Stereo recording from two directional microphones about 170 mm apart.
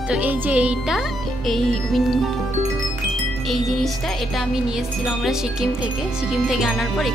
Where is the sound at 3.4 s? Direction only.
Centre (ahead or behind).